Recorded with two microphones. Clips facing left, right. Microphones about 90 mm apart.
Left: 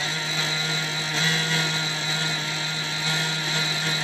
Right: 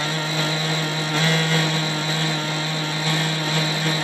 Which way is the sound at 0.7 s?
55° right (ahead or behind).